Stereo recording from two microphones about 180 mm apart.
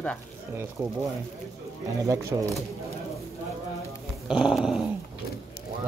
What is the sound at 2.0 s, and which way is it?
Speech, 20° right (ahead or behind).